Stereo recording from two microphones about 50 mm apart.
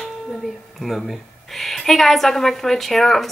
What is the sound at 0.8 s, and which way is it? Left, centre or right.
A woman's voice, centre.